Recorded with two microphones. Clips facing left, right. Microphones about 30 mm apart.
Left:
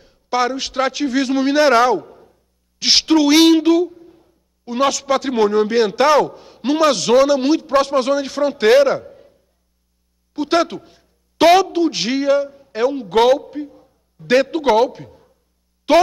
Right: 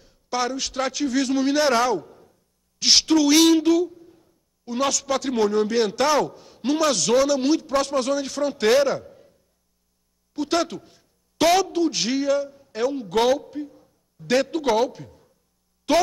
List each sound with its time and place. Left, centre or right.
0.0 s a man's voice: left